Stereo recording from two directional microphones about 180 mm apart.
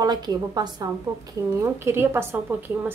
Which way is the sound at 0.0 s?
20° right (ahead or behind).